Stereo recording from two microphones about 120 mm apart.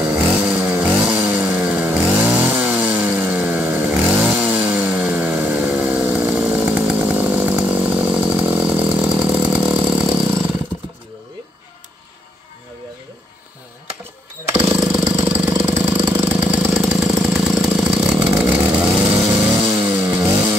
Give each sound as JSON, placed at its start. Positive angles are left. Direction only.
{"t": 0.0, "sound": "chainsaw", "side_deg": -5}
{"t": 14.5, "sound": "vehicle", "side_deg": -10}
{"t": 15.5, "sound": "jackhammer", "side_deg": -15}
{"t": 19.8, "sound": "chainsaw", "side_deg": -10}